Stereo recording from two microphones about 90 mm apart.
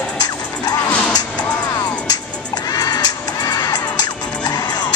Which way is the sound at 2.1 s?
45° left (ahead or behind).